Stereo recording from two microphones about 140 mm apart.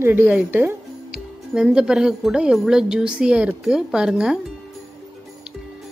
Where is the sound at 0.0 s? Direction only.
15° right (ahead or behind).